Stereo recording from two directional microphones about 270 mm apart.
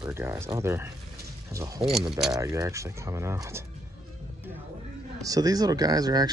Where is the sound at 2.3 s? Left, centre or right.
Centre.